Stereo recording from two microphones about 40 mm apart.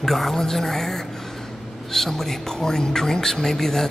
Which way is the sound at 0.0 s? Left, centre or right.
Centre.